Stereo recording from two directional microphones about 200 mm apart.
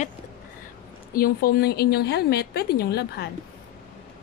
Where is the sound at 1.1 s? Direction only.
50° left (ahead or behind).